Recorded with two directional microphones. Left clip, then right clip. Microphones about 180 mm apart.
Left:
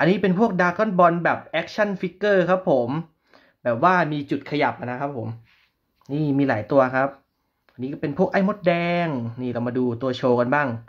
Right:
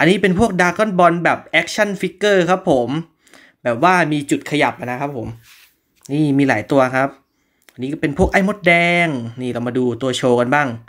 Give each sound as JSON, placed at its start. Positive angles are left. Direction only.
{"t": 0.0, "sound": "speech", "side_deg": -15}